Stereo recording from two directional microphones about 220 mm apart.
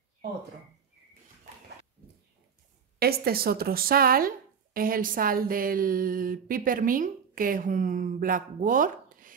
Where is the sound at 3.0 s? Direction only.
45° right (ahead or behind).